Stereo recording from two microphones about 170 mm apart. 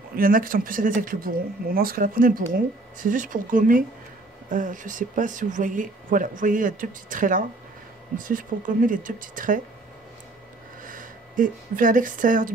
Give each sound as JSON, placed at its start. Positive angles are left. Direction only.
{"t": 0.1, "sound": "speech", "side_deg": -55}
{"t": 10.8, "sound": "speech", "side_deg": -50}